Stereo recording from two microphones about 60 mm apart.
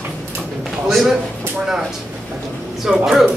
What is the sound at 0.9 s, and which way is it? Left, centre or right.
Speech, centre.